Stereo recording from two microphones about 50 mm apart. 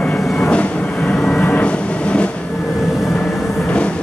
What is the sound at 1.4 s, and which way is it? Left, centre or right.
Vehicle, left.